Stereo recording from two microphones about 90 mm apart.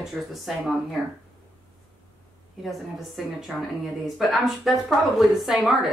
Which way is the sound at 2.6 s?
Centre (ahead or behind).